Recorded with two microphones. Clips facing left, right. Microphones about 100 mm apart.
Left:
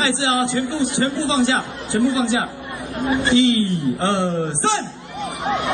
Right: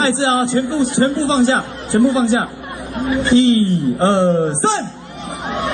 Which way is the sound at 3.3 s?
35° right (ahead or behind).